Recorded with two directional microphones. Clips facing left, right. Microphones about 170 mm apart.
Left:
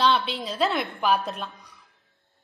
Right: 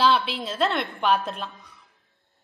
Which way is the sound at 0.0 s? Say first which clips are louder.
Right 1 dB; centre (ahead or behind).